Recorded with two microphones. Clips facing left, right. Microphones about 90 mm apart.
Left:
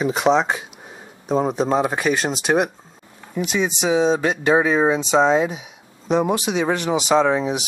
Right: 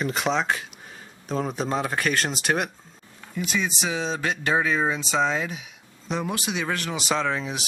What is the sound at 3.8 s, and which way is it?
Speech, 5° left (ahead or behind).